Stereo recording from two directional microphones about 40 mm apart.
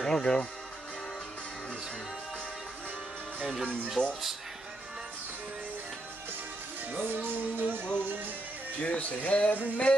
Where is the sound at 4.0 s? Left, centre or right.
Left.